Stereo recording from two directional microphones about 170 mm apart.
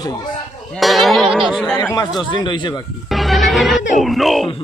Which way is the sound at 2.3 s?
25° left (ahead or behind).